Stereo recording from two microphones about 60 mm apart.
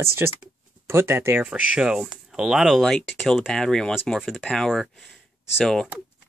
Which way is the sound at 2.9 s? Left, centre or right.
Centre.